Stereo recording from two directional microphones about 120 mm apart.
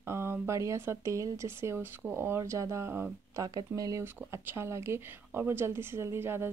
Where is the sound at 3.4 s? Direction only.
30° right (ahead or behind).